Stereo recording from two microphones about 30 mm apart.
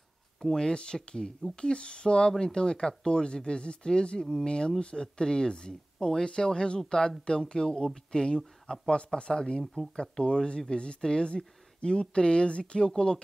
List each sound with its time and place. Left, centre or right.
0.4 s speech: centre
1.5 s speech: left